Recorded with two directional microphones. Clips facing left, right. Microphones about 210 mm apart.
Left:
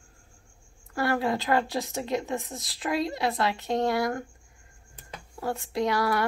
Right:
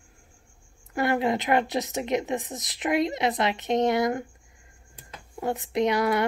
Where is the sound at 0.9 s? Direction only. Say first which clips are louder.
Right 2 dB; 20° right (ahead or behind).